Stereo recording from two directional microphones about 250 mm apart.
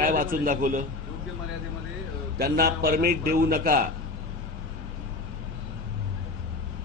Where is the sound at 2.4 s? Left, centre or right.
Right.